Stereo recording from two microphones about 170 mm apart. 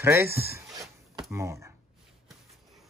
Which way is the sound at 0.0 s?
15° right (ahead or behind).